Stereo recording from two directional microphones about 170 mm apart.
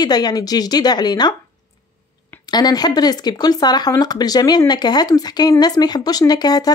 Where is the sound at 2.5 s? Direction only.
25° left (ahead or behind).